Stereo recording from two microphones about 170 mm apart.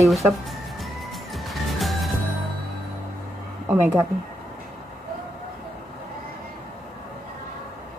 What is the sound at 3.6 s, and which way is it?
Speech, 10° right (ahead or behind).